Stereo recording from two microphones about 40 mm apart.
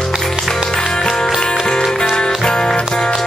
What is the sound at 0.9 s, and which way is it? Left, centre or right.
Music, centre.